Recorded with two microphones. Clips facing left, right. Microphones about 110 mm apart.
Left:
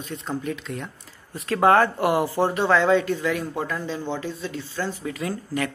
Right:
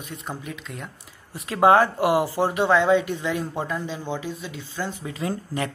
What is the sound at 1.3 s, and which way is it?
Speech, 15° right (ahead or behind).